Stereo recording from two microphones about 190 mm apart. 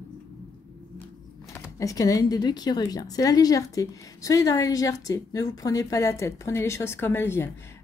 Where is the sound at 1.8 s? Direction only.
15° left (ahead or behind).